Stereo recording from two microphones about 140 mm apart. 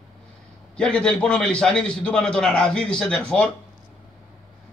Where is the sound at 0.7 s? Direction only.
5° left (ahead or behind).